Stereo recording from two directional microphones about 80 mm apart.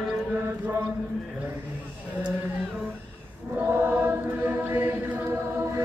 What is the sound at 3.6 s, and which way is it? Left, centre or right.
Choir, right.